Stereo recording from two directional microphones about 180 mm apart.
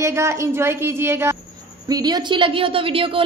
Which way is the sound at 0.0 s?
15° right (ahead or behind).